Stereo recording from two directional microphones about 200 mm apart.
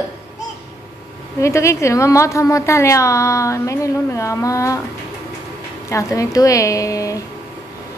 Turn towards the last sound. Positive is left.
turn(degrees=15)  # may be behind; listen again after turning